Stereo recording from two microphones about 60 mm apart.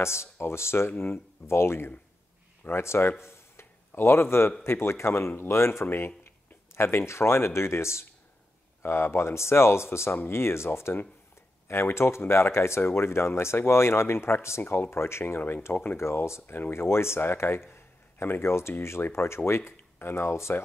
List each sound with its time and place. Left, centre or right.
0.0 s speech: left
16.0 s speech: left